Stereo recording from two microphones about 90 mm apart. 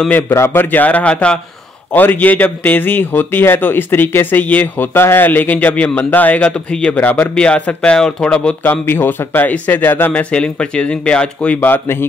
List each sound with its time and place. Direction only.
0.3 s a man's voice: 30° left (ahead or behind)
0.7 s a man's voice: 20° left (ahead or behind)
7.0 s a man's voice: 20° left (ahead or behind)
8.8 s a man's voice: 25° left (ahead or behind)